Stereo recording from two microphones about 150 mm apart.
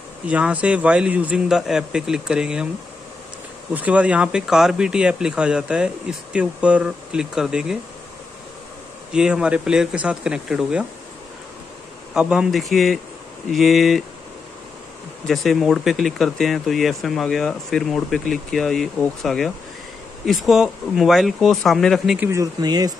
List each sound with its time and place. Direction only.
0.3 s a man's voice: 10° right (ahead or behind)
3.7 s speech: 10° right (ahead or behind)
9.1 s speech: 5° right (ahead or behind)
12.1 s speech: 5° right (ahead or behind)
15.2 s speech: centre (ahead or behind)
22.3 s speech: 25° right (ahead or behind)